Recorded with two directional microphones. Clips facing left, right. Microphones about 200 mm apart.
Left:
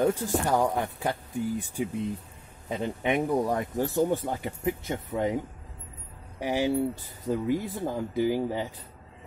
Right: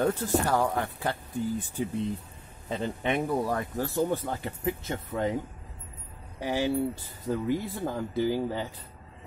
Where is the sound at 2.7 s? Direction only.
10° left (ahead or behind).